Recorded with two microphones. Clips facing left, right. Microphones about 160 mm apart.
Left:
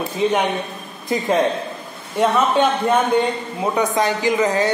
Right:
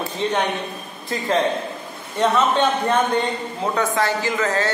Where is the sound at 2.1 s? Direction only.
10° left (ahead or behind).